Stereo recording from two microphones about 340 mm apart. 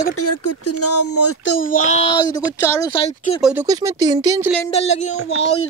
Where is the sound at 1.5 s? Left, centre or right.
Left.